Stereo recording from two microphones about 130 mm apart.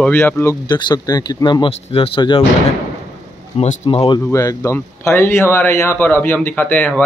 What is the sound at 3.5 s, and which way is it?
Speech, 55° left (ahead or behind).